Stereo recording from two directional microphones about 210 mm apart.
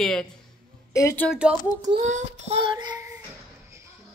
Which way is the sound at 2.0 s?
35° right (ahead or behind).